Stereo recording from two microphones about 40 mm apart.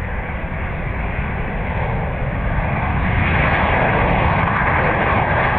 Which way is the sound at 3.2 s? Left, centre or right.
Centre.